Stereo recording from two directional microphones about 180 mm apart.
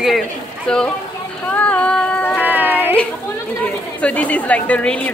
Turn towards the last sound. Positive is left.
turn(degrees=5)  # may be behind; listen again after turning